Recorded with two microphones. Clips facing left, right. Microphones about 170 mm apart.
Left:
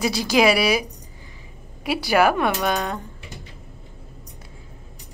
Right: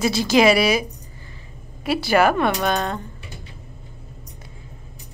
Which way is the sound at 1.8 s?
10° left (ahead or behind).